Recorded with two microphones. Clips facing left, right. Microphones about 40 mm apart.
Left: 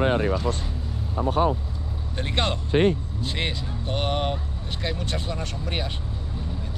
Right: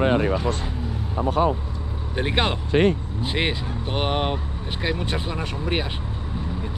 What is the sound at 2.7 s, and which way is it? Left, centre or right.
Speech, right.